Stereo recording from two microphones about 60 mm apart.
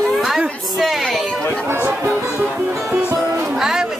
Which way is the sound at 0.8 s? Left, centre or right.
Centre.